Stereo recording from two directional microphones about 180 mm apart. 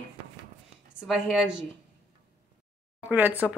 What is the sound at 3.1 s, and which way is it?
Speech, 10° right (ahead or behind).